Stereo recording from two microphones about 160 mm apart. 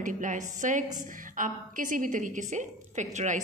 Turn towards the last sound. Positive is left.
turn(degrees=-50)  # may be behind; listen again after turning